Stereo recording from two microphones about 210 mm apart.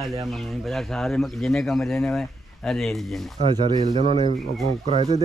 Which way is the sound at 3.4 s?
25° right (ahead or behind).